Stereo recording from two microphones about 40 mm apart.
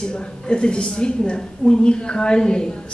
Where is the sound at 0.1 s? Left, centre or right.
Left.